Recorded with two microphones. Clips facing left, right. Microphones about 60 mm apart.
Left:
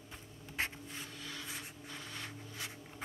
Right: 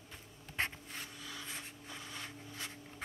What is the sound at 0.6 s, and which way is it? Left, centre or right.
Writing, centre.